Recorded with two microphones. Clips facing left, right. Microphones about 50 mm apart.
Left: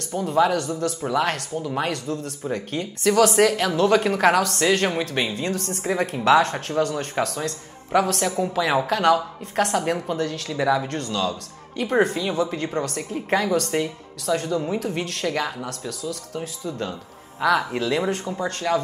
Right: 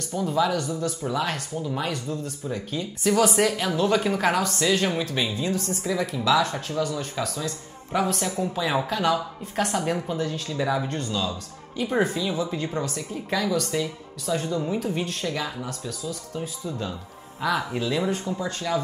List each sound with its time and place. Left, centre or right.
0.1 s speech: left